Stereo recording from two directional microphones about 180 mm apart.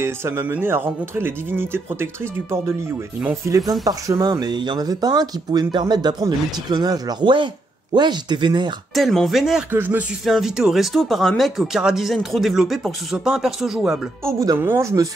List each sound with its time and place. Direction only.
0.0 s speech: 15° right (ahead or behind)
3.2 s speech: 15° right (ahead or behind)
8.9 s speech: centre (ahead or behind)
14.2 s speech: 15° right (ahead or behind)